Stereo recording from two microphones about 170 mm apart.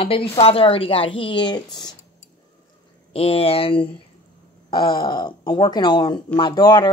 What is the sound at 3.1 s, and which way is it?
Speech, 35° left (ahead or behind).